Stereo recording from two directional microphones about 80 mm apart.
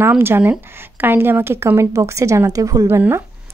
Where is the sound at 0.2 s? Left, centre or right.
Right.